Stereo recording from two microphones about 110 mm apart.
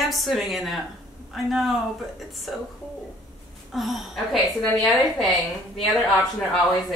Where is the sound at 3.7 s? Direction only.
Centre (ahead or behind).